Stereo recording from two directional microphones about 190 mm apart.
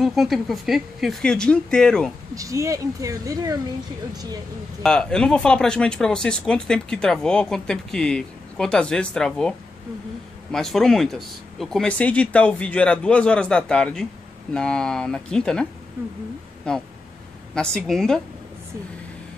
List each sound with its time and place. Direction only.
0.0 s speech: centre (ahead or behind)
2.3 s speech: 15° right (ahead or behind)
4.8 s speech: 5° left (ahead or behind)